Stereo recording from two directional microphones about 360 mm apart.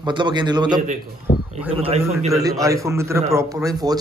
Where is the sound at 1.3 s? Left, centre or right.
Left.